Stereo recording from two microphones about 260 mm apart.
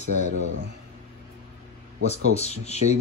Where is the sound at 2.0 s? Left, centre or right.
Left.